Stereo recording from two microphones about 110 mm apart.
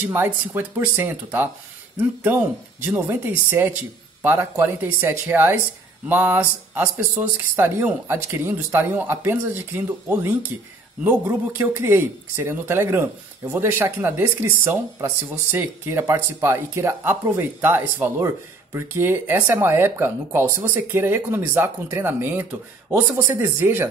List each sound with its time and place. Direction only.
0.1 s speech: 15° right (ahead or behind)